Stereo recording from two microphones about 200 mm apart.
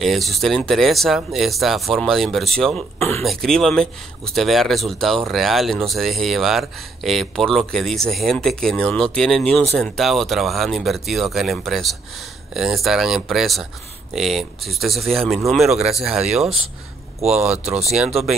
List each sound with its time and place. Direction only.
0.0 s speech: centre (ahead or behind)
17.2 s speech: 35° right (ahead or behind)